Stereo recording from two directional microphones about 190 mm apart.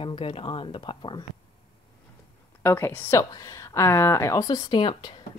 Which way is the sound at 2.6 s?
10° left (ahead or behind).